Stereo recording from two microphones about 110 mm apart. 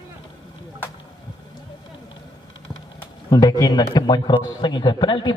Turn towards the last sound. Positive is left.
turn(degrees=40)  # may be behind; listen again after turning